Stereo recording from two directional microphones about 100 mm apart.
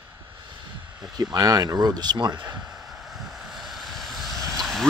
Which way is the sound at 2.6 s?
5° right (ahead or behind).